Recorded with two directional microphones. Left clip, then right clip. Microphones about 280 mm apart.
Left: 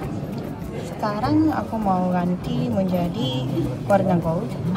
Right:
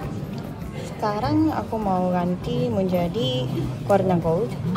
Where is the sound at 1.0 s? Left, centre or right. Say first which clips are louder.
Left 1 dB; left.